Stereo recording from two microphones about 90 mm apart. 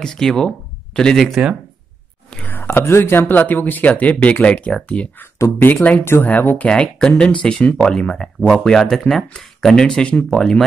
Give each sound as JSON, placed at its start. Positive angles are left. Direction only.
{"t": 0.0, "sound": "speech", "side_deg": 5}
{"t": 2.4, "sound": "speech", "side_deg": 20}